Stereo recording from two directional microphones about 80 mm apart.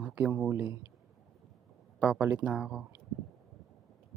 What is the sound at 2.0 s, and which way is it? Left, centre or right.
Speech, centre.